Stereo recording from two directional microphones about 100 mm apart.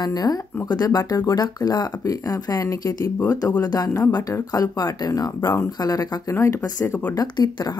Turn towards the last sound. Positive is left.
turn(degrees=40)  # may be behind; listen again after turning